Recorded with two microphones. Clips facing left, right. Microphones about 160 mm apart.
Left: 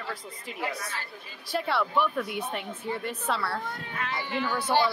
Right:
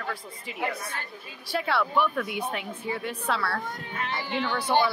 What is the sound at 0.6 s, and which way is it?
Speech, 55° right (ahead or behind).